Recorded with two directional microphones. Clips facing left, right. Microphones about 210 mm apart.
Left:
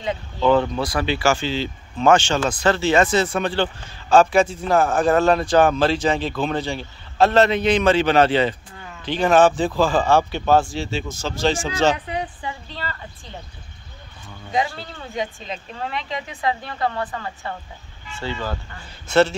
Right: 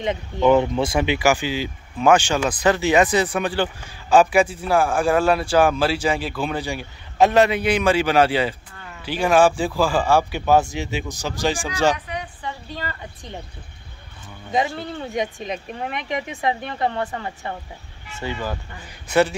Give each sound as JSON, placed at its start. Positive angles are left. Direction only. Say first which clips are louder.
{"t": 0.0, "sound": "a man's voice", "louder": "right 2 dB", "side_deg": -20}
{"t": 14.5, "sound": "a man's voice", "louder": "right 1 dB", "side_deg": -20}